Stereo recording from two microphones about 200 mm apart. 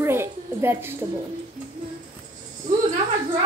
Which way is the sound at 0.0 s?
10° right (ahead or behind).